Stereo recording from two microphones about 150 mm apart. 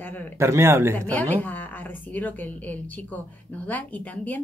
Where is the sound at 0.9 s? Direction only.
10° left (ahead or behind).